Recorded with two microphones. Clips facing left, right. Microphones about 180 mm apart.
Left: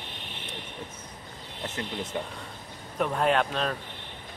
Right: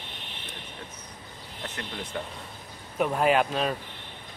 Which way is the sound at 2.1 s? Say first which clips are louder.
Left 1 dB; 20° left (ahead or behind).